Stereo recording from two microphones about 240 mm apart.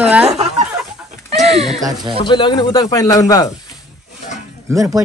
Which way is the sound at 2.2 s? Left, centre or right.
Centre.